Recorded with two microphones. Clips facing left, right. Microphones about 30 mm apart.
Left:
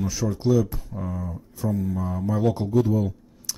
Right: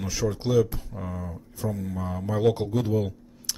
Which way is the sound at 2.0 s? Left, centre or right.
Right.